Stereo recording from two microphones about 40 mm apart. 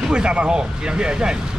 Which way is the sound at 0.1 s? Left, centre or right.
Right.